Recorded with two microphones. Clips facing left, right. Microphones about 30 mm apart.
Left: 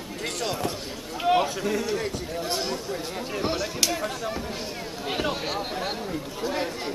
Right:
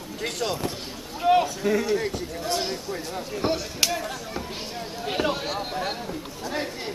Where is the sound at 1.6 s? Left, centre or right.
Centre.